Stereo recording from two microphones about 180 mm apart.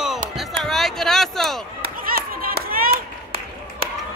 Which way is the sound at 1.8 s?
55° right (ahead or behind).